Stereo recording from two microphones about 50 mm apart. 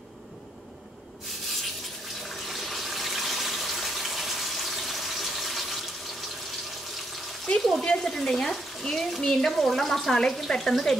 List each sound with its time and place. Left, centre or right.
2.2 s water: centre
7.5 s speech: centre
7.8 s speech: centre
8.1 s speech: centre